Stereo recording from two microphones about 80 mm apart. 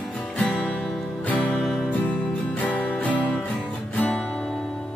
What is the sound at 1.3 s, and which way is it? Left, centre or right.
Music, centre.